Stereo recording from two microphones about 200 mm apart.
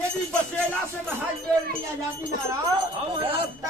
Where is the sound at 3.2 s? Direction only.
25° right (ahead or behind).